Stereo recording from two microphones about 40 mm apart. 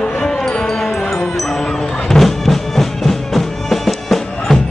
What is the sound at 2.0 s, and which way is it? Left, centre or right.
Music, centre.